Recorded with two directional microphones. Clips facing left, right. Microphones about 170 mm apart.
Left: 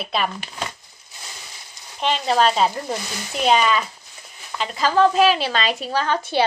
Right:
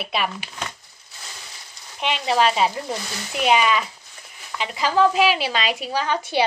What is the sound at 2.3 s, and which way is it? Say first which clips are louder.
A woman's voice: even; 10° right (ahead or behind).